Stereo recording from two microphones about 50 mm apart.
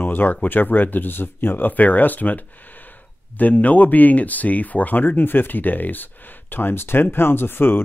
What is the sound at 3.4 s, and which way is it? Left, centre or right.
Speech, left.